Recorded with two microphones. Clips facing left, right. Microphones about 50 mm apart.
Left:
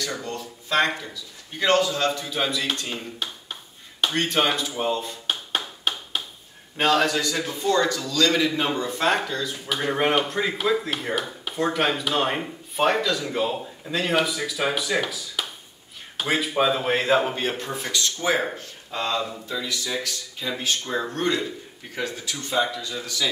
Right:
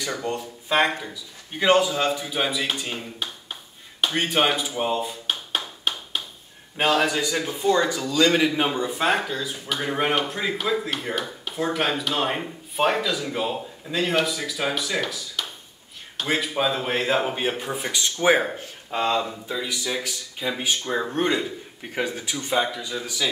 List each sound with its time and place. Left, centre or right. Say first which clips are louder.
0.0 s a man's voice: right 3 dB; centre
4.0 s a sound: right 1 dB; centre
6.8 s a man's voice: even; centre